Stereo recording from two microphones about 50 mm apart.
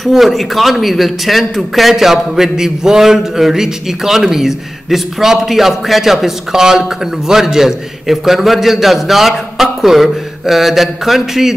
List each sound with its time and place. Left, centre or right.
0.0 s a man's voice: centre